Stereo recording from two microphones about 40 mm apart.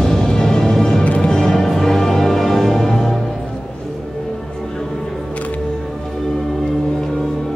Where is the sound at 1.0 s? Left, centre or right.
Left.